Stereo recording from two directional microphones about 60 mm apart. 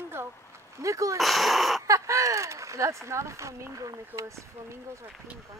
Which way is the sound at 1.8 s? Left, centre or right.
Right.